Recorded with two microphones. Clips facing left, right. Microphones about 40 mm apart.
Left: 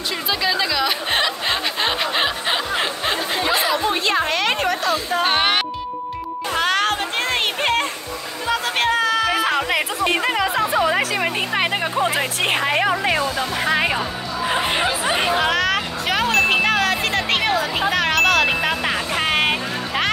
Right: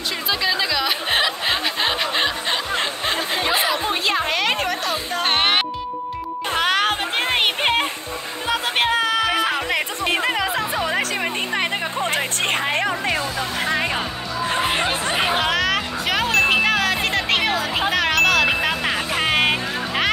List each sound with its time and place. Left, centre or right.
0.3 s music: centre
3.4 s chatter: centre
3.8 s music: centre
6.6 s a sound: centre
7.3 s music: right
8.5 s music: centre